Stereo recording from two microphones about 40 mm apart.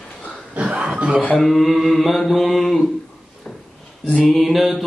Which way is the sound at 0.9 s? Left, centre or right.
Right.